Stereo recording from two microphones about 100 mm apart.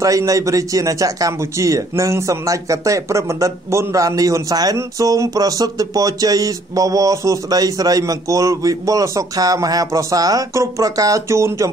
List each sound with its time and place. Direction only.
0.0 s a man's voice: 35° right (ahead or behind)